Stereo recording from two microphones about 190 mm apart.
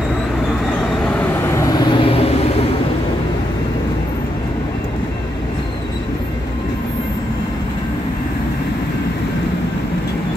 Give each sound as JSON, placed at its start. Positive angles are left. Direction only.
{"t": 1.0, "sound": "train", "side_deg": 10}
{"t": 1.7, "sound": "vehicle", "side_deg": 25}